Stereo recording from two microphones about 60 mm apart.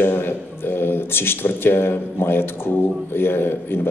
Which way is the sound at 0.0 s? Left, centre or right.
Left.